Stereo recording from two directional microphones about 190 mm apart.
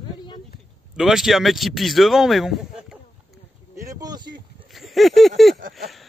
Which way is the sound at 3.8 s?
15° right (ahead or behind).